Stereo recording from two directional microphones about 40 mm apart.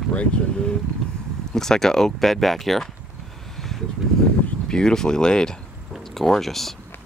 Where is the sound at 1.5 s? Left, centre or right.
Centre.